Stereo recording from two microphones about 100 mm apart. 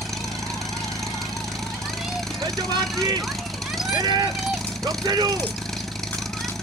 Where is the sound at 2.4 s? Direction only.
40° right (ahead or behind).